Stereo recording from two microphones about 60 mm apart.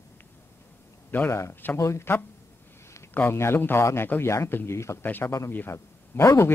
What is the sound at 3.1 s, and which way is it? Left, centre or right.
Speech, left.